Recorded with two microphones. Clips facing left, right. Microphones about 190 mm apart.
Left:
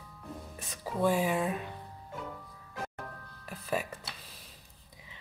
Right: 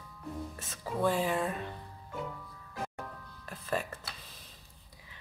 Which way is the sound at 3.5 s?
10° left (ahead or behind).